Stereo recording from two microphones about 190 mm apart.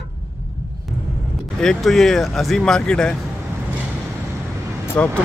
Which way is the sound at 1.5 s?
Centre (ahead or behind).